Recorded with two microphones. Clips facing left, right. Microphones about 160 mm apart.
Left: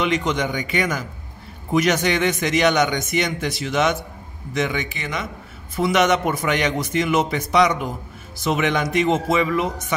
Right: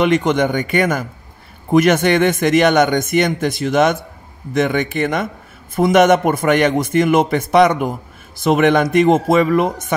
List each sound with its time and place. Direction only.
0.0 s speech: 55° right (ahead or behind)